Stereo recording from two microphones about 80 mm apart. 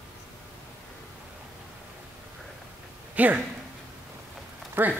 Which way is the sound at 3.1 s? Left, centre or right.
Centre.